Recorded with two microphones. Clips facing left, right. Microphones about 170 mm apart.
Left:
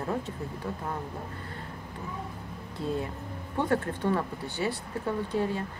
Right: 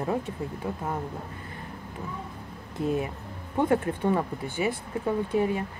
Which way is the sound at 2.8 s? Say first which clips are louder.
Right 4 dB; 15° right (ahead or behind).